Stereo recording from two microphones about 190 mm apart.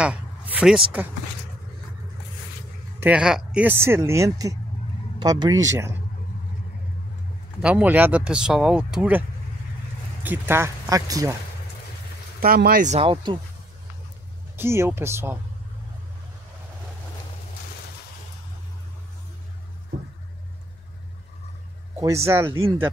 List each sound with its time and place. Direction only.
0.0 s a sound: 5° right (ahead or behind)
3.0 s speech: 5° right (ahead or behind)
7.6 s speech: 10° right (ahead or behind)
10.2 s speech: 10° right (ahead or behind)
12.4 s speech: 55° right (ahead or behind); by 13.4 s 25° right (ahead or behind)
14.6 s speech: 15° right (ahead or behind)
22.0 s speech: 15° right (ahead or behind)